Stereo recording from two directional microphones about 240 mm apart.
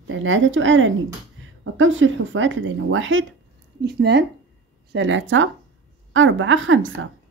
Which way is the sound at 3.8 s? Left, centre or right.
Right.